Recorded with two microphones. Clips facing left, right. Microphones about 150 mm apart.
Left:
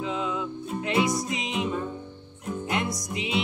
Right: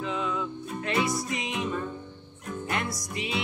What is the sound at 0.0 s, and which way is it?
Music, 15° left (ahead or behind).